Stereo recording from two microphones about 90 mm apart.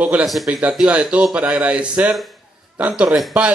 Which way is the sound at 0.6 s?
10° right (ahead or behind).